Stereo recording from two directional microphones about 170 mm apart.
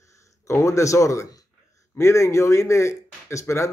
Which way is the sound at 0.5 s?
15° left (ahead or behind).